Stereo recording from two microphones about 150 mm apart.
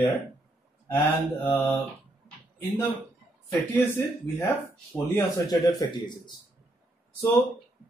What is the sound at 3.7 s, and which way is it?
Speech, 15° left (ahead or behind).